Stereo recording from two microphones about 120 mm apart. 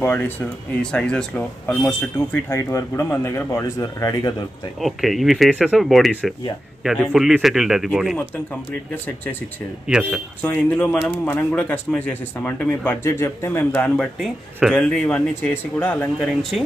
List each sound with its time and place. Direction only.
0.0 s speech: 15° left (ahead or behind)
4.8 s a man's voice: centre (ahead or behind)
9.9 s a man's voice: 5° right (ahead or behind)
10.4 s speech: 15° left (ahead or behind)
16.2 s a man's voice: centre (ahead or behind)